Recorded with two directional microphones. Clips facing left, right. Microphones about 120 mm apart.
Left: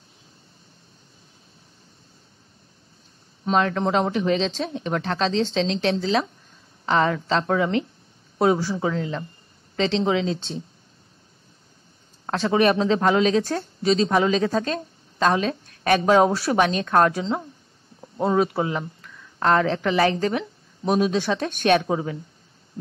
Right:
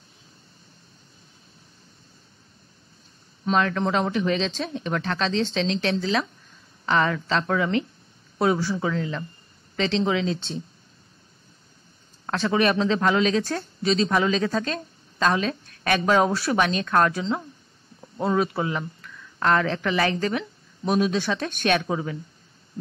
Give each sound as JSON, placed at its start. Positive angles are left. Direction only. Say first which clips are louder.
{"t": 3.4, "sound": "speech", "louder": "left 1 dB", "side_deg": 30}
{"t": 12.3, "sound": "speech", "louder": "left 3 dB", "side_deg": 35}